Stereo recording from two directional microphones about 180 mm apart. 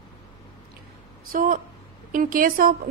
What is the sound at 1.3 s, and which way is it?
A woman's voice, 50° right (ahead or behind).